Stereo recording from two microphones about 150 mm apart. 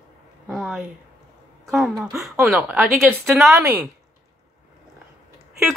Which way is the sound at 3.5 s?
20° right (ahead or behind).